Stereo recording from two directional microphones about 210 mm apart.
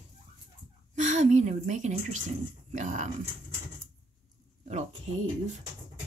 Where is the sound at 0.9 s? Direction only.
35° right (ahead or behind).